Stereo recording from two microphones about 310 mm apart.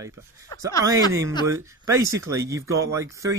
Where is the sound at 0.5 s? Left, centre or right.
Centre.